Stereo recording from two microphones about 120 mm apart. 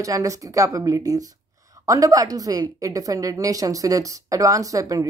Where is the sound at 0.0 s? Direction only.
30° right (ahead or behind).